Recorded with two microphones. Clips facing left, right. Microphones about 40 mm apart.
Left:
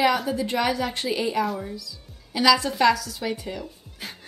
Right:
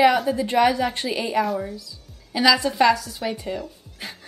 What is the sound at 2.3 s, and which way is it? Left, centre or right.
A woman's voice, right.